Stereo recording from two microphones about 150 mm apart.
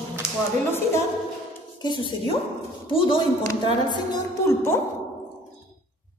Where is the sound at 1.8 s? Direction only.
30° left (ahead or behind).